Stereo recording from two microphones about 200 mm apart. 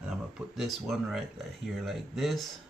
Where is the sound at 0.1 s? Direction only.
Centre (ahead or behind).